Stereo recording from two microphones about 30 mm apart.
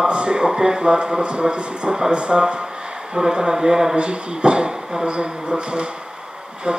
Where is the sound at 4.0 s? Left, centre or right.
Right.